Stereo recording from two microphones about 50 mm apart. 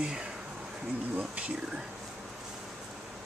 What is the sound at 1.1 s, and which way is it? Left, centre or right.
Speech, right.